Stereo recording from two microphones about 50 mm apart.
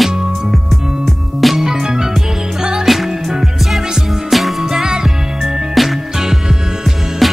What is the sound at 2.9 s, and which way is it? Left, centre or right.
Music, centre.